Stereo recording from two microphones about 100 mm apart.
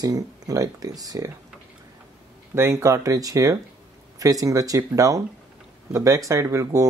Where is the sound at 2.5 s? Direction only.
25° right (ahead or behind).